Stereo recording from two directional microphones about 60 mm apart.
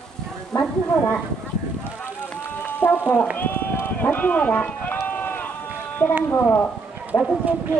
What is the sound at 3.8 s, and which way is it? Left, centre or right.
Run, left.